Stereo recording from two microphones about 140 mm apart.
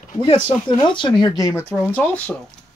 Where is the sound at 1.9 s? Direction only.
10° left (ahead or behind).